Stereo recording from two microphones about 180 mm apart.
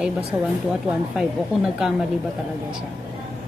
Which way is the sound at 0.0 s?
5° right (ahead or behind).